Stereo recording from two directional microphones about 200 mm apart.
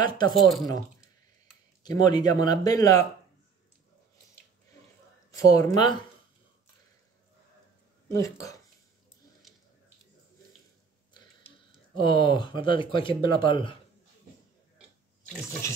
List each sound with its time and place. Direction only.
0.3 s speech: centre (ahead or behind)
1.8 s speech: 20° left (ahead or behind)
5.3 s speech: 15° left (ahead or behind)
8.1 s speech: 15° left (ahead or behind)
12.0 s speech: 25° left (ahead or behind)
15.6 s speech: 15° left (ahead or behind)